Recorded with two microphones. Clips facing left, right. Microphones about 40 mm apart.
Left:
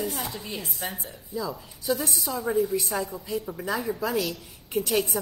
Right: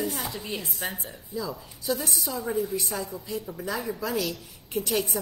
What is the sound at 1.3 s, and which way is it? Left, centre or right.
A woman's voice, centre.